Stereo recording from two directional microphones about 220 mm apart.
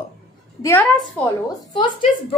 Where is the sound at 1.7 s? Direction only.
20° left (ahead or behind).